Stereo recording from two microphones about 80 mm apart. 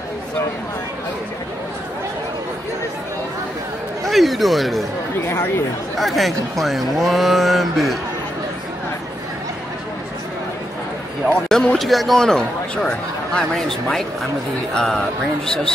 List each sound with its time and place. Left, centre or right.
4.0 s speech: centre
5.2 s speech: left
5.9 s speech: centre
11.4 s speech: centre